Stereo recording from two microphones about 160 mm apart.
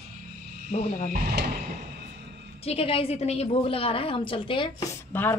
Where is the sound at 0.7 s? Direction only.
45° left (ahead or behind).